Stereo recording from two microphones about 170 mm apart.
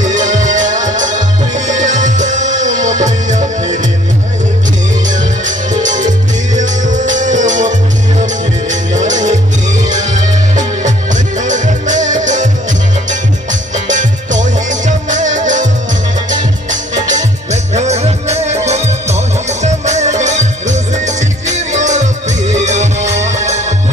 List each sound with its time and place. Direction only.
0.0 s music: 45° right (ahead or behind)
5.0 s music: 45° right (ahead or behind)
9.0 s music: 45° right (ahead or behind)
16.9 s music: 45° right (ahead or behind)